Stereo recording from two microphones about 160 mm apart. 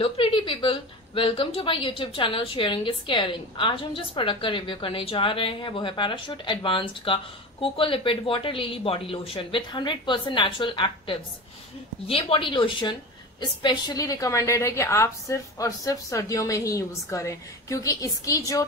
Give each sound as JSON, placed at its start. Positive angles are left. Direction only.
{"t": 0.0, "sound": "a woman's voice", "side_deg": 35}